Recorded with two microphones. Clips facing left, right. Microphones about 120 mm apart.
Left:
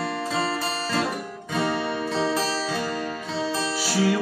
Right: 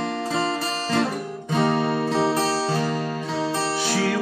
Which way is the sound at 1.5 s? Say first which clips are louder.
Right 4 dB; 45° right (ahead or behind).